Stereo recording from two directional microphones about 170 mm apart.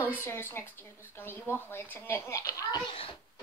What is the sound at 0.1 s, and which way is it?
A woman's voice, 15° left (ahead or behind).